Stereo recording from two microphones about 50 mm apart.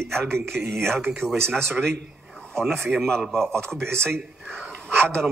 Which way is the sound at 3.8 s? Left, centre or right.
Right.